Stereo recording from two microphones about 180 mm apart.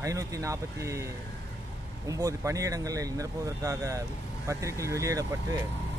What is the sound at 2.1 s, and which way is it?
Speech, 20° right (ahead or behind).